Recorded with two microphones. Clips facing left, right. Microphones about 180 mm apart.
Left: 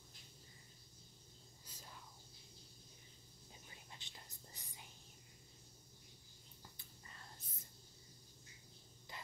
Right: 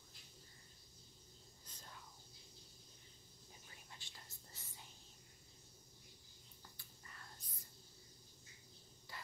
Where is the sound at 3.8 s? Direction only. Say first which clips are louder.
Left 1 dB; 20° left (ahead or behind).